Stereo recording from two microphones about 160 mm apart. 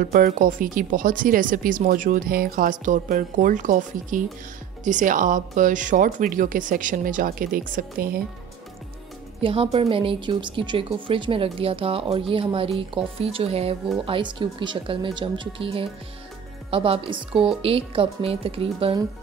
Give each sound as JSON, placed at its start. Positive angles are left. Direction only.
{"t": 0.0, "sound": "speech", "side_deg": -65}
{"t": 9.4, "sound": "speech", "side_deg": -35}